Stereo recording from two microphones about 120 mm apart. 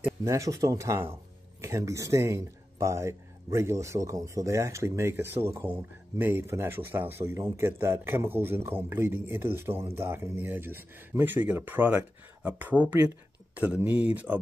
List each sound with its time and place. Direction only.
0.2 s speech: 25° right (ahead or behind)